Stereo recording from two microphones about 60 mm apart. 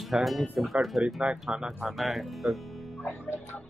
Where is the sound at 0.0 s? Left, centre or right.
Centre.